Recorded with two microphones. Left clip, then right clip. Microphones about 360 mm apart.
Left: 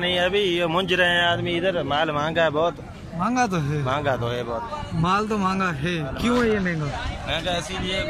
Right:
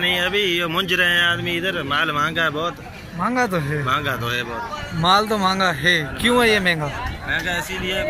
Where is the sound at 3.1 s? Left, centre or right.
Centre.